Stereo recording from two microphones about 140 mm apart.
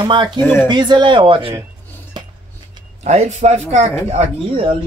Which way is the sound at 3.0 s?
55° right (ahead or behind).